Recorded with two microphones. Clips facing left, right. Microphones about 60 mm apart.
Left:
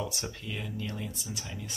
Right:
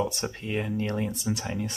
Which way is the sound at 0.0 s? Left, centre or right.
Right.